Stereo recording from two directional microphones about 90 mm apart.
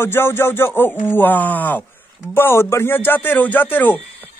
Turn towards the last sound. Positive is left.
turn(degrees=20)  # may be behind; listen again after turning